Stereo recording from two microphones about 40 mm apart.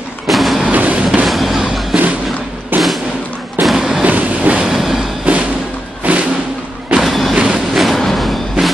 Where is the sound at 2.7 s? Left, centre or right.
Right.